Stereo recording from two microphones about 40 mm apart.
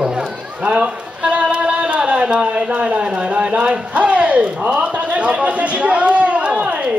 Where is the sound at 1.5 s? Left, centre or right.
Right.